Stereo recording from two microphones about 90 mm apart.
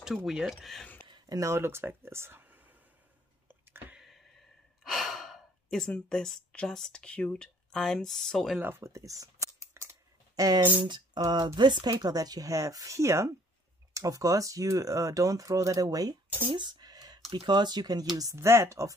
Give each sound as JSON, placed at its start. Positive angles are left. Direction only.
{"t": 0.0, "sound": "speech", "side_deg": -5}
{"t": 1.3, "sound": "speech", "side_deg": -35}
{"t": 3.4, "sound": "a sound", "side_deg": -25}
{"t": 4.0, "sound": "a sound", "side_deg": 0}
{"t": 4.8, "sound": "speech", "side_deg": 0}
{"t": 8.5, "sound": "scissors", "side_deg": -25}
{"t": 11.1, "sound": "speech", "side_deg": -50}
{"t": 16.4, "sound": "a sound", "side_deg": -60}
{"t": 17.4, "sound": "speech", "side_deg": -55}
{"t": 18.1, "sound": "speech", "side_deg": -35}